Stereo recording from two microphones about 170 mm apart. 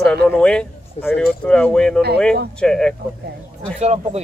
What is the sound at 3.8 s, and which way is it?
Speech, 40° right (ahead or behind).